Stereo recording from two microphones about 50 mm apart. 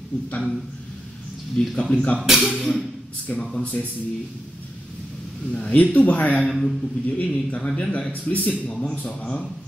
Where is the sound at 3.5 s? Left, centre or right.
Left.